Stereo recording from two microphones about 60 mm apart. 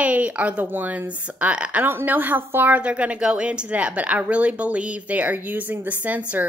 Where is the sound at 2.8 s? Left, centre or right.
Right.